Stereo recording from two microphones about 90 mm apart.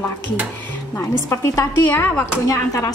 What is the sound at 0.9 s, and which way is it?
Speech, 35° left (ahead or behind).